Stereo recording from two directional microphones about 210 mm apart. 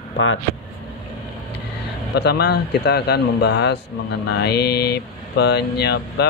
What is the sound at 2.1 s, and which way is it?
Speech, 50° left (ahead or behind).